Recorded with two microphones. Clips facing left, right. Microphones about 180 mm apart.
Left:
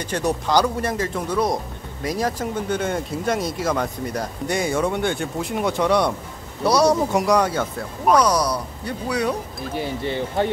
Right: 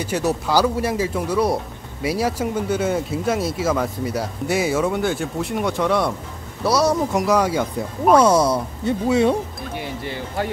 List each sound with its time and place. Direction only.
0.0 s speech: 5° right (ahead or behind)
8.3 s speech: 25° right (ahead or behind)
9.8 s speech: 25° left (ahead or behind)